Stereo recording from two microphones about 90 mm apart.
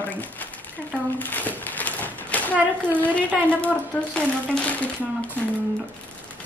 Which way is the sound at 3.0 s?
15° left (ahead or behind).